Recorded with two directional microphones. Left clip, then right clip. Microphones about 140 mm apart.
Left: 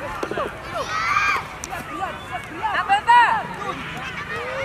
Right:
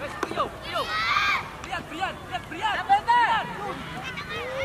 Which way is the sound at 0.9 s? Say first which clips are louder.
Left 4 dB; 15° right (ahead or behind).